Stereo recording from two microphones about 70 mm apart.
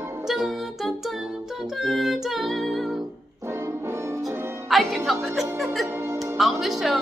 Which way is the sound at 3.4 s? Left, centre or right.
Right.